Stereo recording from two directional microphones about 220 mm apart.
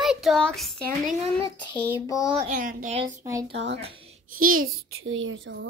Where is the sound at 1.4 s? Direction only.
15° left (ahead or behind).